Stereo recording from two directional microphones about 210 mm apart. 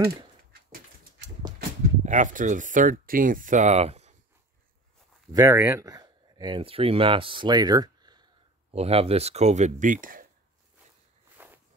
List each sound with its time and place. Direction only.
0.5 s dog: 40° right (ahead or behind)
2.0 s speech: 35° right (ahead or behind)
5.3 s speech: 15° right (ahead or behind); by 10.2 s 40° right (ahead or behind)
11.3 s walk: 10° right (ahead or behind)